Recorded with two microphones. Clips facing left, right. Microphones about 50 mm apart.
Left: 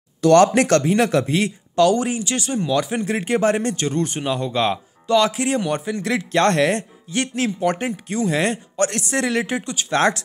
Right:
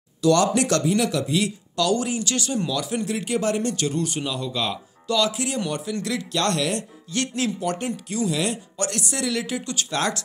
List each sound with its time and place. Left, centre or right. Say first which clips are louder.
0.2 s speech: left 6 dB; left